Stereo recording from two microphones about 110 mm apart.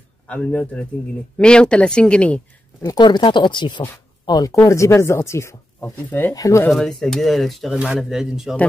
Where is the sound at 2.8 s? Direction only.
40° left (ahead or behind).